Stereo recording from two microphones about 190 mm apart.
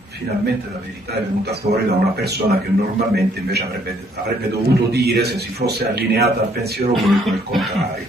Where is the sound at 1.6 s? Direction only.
50° right (ahead or behind).